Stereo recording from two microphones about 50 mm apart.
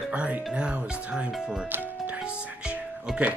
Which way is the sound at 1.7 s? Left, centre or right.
Right.